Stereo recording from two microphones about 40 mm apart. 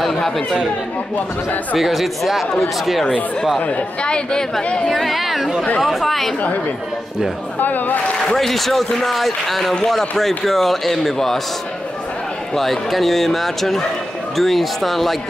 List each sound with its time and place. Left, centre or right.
0.0 s speech: centre
1.1 s speech: left
1.8 s a man's voice: centre
3.5 s speech: left
4.8 s a man's voice: centre
7.6 s speech: left
8.4 s a man's voice: centre
12.5 s a man's voice: centre